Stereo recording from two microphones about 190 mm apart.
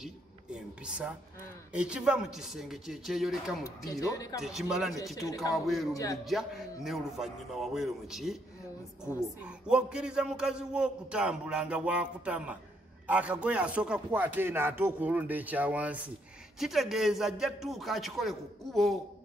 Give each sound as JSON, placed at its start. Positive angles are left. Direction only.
{"t": 0.8, "sound": "a man's voice", "side_deg": -5}
{"t": 3.6, "sound": "speech", "side_deg": 15}
{"t": 4.4, "sound": "a man's voice", "side_deg": -5}
{"t": 5.2, "sound": "speech", "side_deg": 15}
{"t": 6.2, "sound": "a man's voice", "side_deg": 0}
{"t": 9.7, "sound": "a man's voice", "side_deg": -5}